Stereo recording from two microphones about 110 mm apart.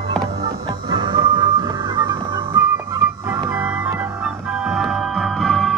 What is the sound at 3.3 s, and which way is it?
Music, 15° right (ahead or behind).